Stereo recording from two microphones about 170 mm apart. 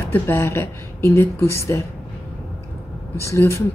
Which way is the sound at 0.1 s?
15° left (ahead or behind).